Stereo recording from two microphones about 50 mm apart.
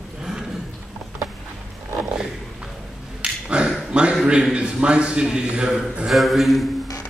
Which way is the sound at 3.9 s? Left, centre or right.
Centre.